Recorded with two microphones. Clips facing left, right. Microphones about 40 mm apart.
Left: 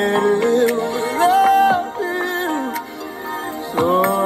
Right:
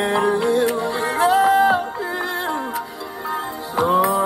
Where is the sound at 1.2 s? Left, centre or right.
Left.